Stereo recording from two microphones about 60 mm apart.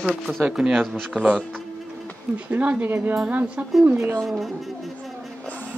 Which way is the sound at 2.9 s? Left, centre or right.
Right.